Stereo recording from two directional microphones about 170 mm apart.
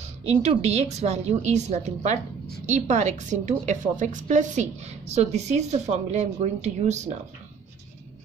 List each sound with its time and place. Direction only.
0.2 s a woman's voice: 40° right (ahead or behind)